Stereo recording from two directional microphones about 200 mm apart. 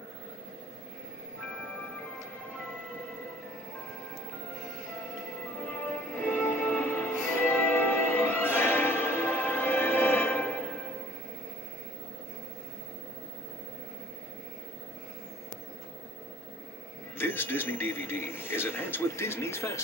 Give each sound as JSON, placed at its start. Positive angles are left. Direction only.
{"t": 6.2, "sound": "music", "side_deg": 10}
{"t": 17.2, "sound": "speech", "side_deg": 10}